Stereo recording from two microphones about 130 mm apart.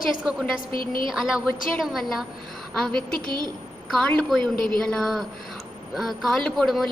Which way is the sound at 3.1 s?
90° left.